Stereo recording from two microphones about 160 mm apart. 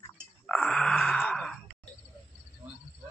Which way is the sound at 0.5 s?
5° left (ahead or behind).